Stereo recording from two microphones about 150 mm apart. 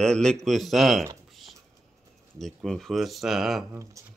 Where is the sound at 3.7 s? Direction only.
20° right (ahead or behind).